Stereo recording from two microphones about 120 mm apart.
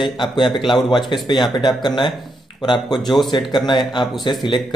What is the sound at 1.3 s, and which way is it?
Speech, 40° left (ahead or behind).